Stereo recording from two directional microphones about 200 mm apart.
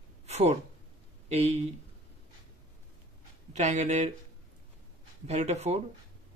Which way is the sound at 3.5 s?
35° right (ahead or behind).